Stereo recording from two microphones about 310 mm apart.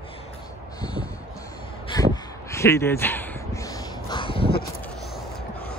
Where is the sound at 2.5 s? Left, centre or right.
Centre.